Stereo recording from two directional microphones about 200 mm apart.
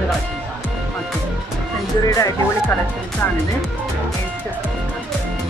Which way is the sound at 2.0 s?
15° left (ahead or behind).